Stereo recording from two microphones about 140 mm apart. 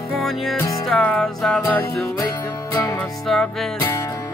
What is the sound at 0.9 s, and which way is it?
Music, 5° left (ahead or behind).